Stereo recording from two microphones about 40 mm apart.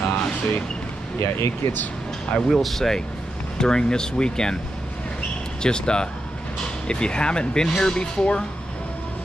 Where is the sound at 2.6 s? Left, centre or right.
Centre.